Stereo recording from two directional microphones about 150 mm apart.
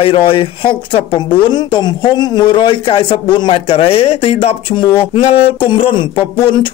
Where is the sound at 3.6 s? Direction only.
40° left (ahead or behind).